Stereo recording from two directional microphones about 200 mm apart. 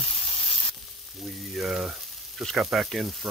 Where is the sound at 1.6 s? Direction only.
Centre (ahead or behind).